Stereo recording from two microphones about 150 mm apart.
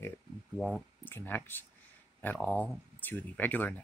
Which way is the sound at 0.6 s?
5° right (ahead or behind).